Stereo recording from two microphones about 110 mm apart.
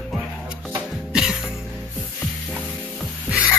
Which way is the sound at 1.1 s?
5° right (ahead or behind).